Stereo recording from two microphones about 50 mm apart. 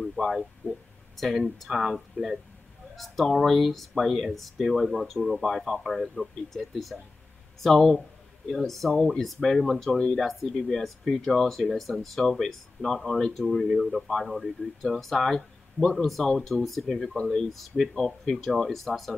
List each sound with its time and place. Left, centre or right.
0.0 s speech: centre
9.8 s speech: centre
10.1 s speech: centre
13.7 s speech: centre